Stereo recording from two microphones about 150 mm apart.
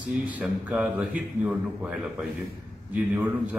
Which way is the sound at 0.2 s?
10° right (ahead or behind).